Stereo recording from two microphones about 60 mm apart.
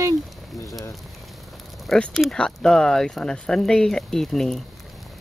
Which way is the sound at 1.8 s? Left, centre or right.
Centre.